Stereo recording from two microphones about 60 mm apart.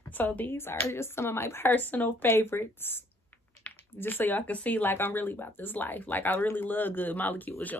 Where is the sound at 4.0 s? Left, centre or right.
Left.